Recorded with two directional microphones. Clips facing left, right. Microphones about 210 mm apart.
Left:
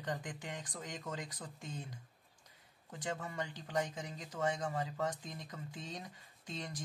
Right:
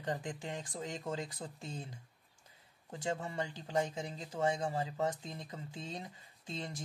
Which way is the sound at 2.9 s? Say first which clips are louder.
Right 4 dB; 25° right (ahead or behind).